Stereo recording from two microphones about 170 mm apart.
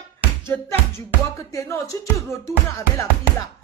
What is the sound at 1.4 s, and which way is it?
Music, 20° left (ahead or behind).